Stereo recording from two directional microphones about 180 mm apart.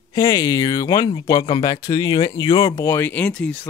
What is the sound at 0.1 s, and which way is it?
Speech, 20° left (ahead or behind).